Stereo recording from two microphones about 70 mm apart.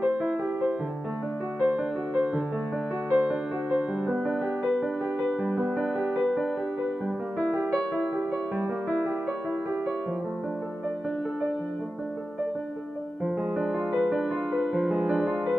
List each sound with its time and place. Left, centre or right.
1.6 s music: centre
5.5 s music: right
6.2 s music: centre
8.5 s music: centre
13.2 s music: centre
14.5 s music: centre
14.8 s music: centre